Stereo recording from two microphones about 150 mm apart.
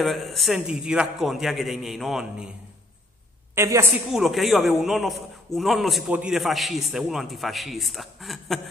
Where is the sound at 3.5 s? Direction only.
20° right (ahead or behind).